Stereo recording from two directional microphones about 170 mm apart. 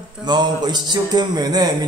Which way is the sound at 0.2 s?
25° right (ahead or behind).